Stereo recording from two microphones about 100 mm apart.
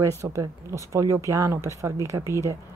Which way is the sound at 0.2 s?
30° right (ahead or behind).